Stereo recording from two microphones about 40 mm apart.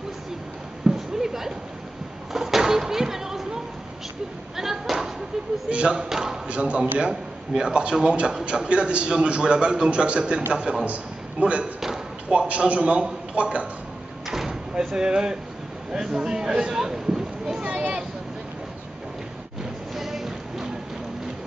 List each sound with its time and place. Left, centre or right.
0.9 s a sound: centre
2.3 s speech: centre
4.6 s a sound: centre
5.7 s a man's voice: right
5.9 s speech: centre
6.4 s a man's voice: right
14.2 s door: centre
15.0 s a man's voice: centre
17.6 s a sound: right
20.0 s music: centre